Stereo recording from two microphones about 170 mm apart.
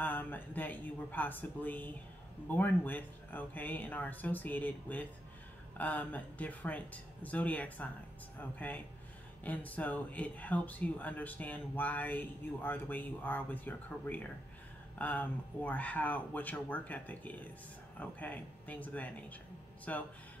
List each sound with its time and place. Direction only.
0.0 s speech: 10° left (ahead or behind)